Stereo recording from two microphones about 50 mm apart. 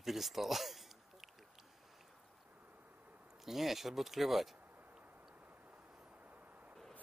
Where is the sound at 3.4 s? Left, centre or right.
Centre.